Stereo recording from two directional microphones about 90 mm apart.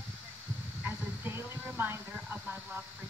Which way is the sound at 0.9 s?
25° right (ahead or behind).